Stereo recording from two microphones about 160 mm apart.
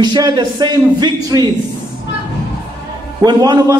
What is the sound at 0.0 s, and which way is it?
A man's voice, 25° right (ahead or behind).